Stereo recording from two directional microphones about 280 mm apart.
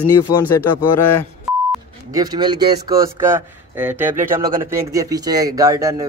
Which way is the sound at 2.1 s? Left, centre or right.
Centre.